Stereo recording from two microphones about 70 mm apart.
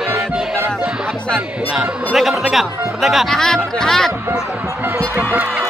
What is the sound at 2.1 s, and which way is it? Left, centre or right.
Music, centre.